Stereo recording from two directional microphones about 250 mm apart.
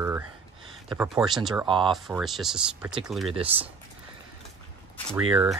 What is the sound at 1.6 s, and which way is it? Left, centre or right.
Speech, centre.